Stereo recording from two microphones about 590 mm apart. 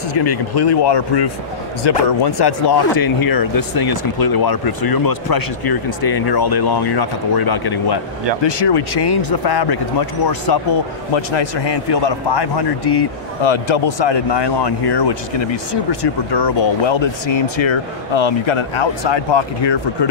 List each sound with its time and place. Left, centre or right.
0.2 s speech: left